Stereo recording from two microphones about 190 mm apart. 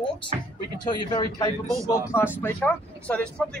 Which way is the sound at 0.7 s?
20° left (ahead or behind).